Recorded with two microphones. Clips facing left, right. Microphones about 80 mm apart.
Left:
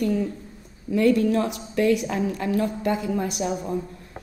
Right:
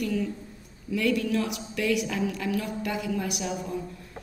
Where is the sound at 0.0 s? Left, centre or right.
Left.